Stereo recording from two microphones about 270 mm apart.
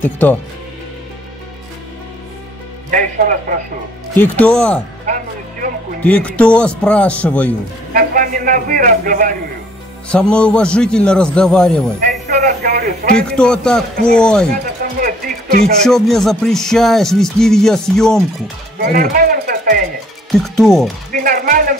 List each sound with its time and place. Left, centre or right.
0.0 s speech: centre
2.9 s a man's voice: right
4.2 s music: centre
5.0 s music: right
6.0 s music: centre
7.9 s a man's voice: right
10.0 s music: centre
12.3 s a man's voice: right
13.3 s music: centre
14.5 s a sound: right
15.8 s music: centre
18.8 s a man's voice: right
20.3 s music: centre
21.1 s a man's voice: right